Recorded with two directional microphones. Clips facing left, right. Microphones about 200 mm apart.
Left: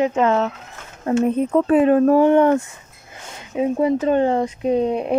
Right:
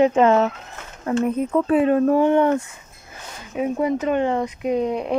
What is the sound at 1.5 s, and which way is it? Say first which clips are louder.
Speech: left 3 dB; 45° left (ahead or behind).